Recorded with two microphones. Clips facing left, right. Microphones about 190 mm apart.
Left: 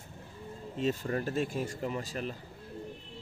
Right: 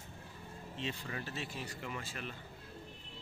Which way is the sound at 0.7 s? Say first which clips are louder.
Left 11 dB; 45° left (ahead or behind).